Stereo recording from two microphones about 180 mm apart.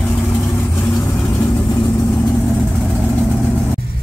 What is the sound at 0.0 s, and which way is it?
Vehicle, 10° left (ahead or behind).